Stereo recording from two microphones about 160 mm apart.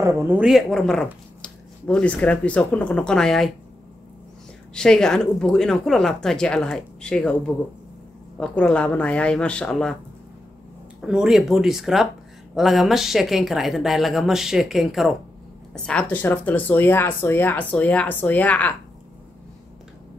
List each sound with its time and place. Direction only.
0.0 s a woman's voice: 15° right (ahead or behind); by 3.5 s centre (ahead or behind)
4.7 s a woman's voice: 5° left (ahead or behind)
8.4 s speech: 5° left (ahead or behind)
11.0 s a woman's voice: 5° right (ahead or behind)